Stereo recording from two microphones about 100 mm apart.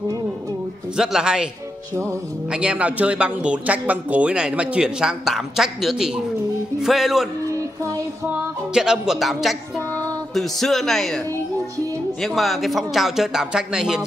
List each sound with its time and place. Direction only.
0.9 s speech: 5° right (ahead or behind)
2.5 s a man's voice: 10° right (ahead or behind)
8.7 s a man's voice: 5° right (ahead or behind)
12.2 s a man's voice: centre (ahead or behind)